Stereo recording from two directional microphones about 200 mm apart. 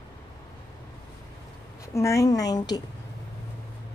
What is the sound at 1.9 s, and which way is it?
Speech, 15° left (ahead or behind).